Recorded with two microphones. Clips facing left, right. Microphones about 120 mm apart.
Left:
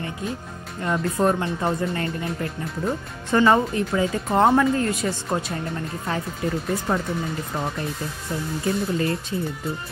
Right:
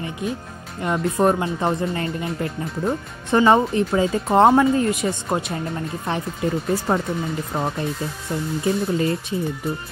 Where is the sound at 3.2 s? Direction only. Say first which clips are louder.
Right 2 dB; 20° right (ahead or behind).